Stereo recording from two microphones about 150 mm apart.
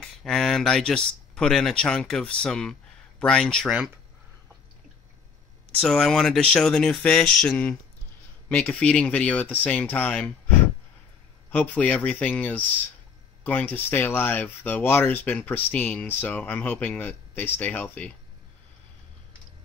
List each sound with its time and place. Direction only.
0.0 s speech: 5° left (ahead or behind)
5.8 s speech: 5° left (ahead or behind)
11.5 s speech: 10° left (ahead or behind)